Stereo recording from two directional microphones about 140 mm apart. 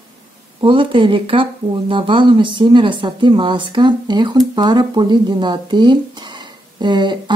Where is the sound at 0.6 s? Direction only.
40° right (ahead or behind).